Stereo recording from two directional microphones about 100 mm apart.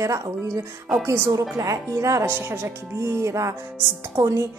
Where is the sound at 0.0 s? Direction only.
30° right (ahead or behind).